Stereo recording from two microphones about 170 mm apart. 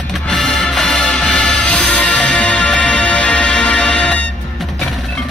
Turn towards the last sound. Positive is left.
turn(degrees=5)  # may be behind; listen again after turning